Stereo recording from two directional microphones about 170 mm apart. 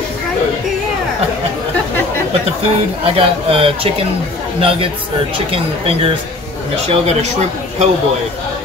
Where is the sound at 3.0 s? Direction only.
30° right (ahead or behind).